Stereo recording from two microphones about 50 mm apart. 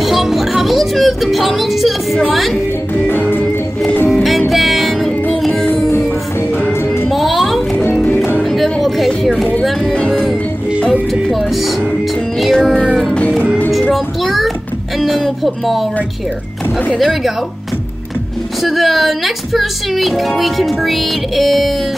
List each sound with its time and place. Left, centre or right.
0.0 s music: centre
3.1 s music: left
4.1 s music: centre
5.4 s music: centre
7.1 s music: centre
9.9 s music: centre
10.9 s music: centre
13.9 s child singing: centre
15.0 s a sound: centre
17.0 s speech: centre
18.6 s speech: centre